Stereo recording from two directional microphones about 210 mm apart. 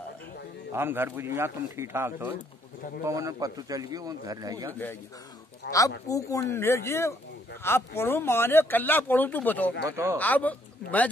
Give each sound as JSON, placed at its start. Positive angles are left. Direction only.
{"t": 0.7, "sound": "a man's voice", "side_deg": -10}
{"t": 5.7, "sound": "speech", "side_deg": 15}
{"t": 9.8, "sound": "a man's voice", "side_deg": -15}
{"t": 10.1, "sound": "speech", "side_deg": 5}